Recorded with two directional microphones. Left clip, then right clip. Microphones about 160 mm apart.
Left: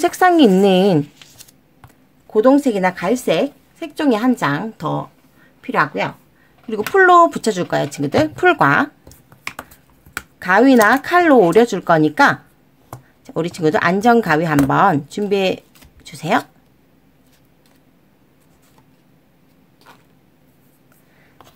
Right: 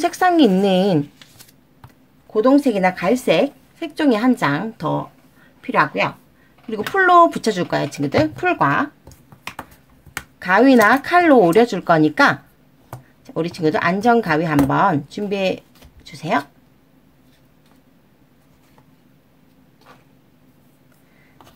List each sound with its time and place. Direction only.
0.0 s speech: 20° left (ahead or behind)
2.3 s speech: 25° left (ahead or behind)
2.6 s speech: 15° left (ahead or behind)
8.5 s speech: 35° left (ahead or behind)
10.4 s speech: 15° left (ahead or behind)
12.9 s speech: 25° left (ahead or behind)